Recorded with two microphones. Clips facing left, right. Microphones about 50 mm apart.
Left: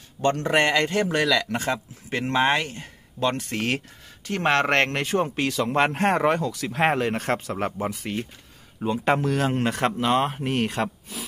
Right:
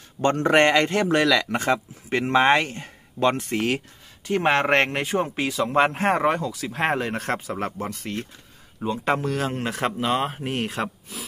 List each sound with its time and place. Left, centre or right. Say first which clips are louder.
0.2 s speech: right 3 dB; right
4.3 s speech: right 2 dB; centre